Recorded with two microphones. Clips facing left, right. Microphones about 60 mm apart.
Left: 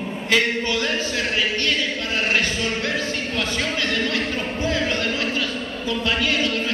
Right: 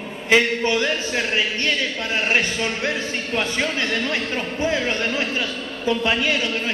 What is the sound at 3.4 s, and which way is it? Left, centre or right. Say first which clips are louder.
A man's voice: right 3 dB; right.